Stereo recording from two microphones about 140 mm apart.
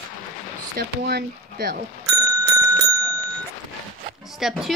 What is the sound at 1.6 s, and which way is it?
Speech, 90° right.